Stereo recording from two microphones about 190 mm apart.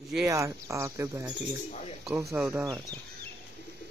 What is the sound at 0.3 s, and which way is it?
Speech, 15° right (ahead or behind).